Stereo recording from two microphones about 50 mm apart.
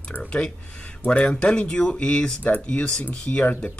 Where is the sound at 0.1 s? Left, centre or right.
Left.